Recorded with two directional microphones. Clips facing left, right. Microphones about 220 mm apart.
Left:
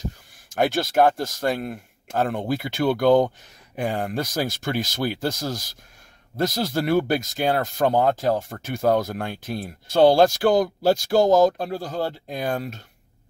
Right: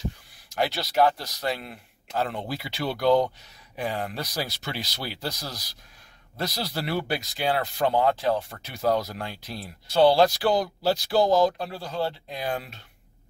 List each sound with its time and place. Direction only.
0.0 s speech: 50° left (ahead or behind)